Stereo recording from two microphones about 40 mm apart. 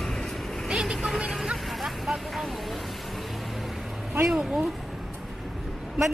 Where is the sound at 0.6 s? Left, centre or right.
Centre.